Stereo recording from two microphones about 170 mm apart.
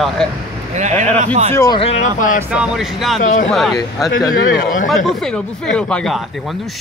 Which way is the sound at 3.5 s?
Centre (ahead or behind).